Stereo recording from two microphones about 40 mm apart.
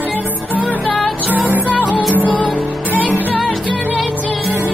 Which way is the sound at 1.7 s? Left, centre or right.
Left.